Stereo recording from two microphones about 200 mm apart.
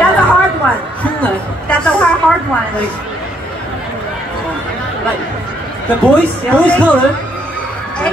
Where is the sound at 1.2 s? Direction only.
5° left (ahead or behind).